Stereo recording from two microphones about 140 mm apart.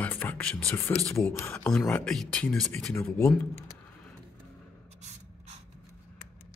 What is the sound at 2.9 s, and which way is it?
Speech, 15° left (ahead or behind).